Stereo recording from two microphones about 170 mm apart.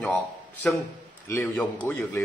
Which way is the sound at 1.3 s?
10° left (ahead or behind).